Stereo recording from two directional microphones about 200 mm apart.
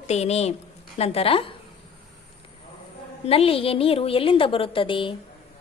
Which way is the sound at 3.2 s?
30° left (ahead or behind).